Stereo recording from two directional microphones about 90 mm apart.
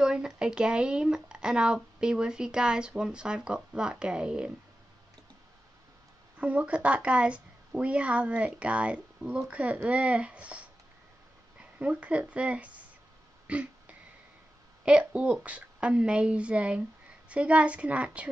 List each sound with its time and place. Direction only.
0.0 s speech: 10° right (ahead or behind)
6.3 s speech: 15° right (ahead or behind)
11.8 s speech: 15° right (ahead or behind)
13.5 s throat clearing: 15° right (ahead or behind)
14.9 s speech: 15° right (ahead or behind)